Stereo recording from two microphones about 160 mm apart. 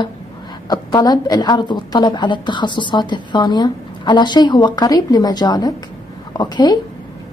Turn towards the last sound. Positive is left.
turn(degrees=25)  # may be behind; listen again after turning